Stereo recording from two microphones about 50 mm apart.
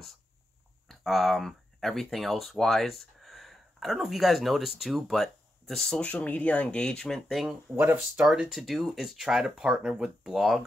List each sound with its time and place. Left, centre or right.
0.8 s speech: centre
5.9 s speech: left
6.8 s speech: centre
7.2 s speech: centre
7.7 s speech: right
8.3 s speech: centre